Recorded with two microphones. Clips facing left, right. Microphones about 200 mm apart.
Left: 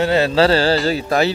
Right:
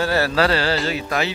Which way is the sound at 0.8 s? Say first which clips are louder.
Left 6 dB; 35° left (ahead or behind).